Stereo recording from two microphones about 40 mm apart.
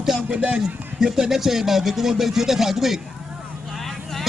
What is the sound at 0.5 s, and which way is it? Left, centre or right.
A man's voice, centre.